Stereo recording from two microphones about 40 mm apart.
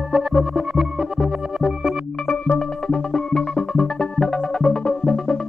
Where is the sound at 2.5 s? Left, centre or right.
Centre.